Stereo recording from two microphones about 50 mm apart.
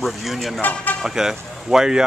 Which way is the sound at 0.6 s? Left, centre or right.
Left.